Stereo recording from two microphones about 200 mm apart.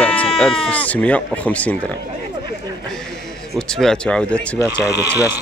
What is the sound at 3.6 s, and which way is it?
Speech, 5° left (ahead or behind).